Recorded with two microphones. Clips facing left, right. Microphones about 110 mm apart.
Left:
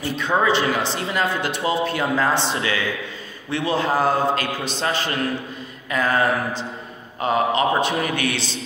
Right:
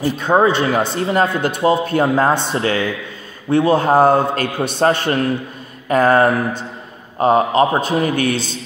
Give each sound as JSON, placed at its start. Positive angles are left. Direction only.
{"t": 0.0, "sound": "a man's voice", "side_deg": -45}
{"t": 5.9, "sound": "a man's voice", "side_deg": -45}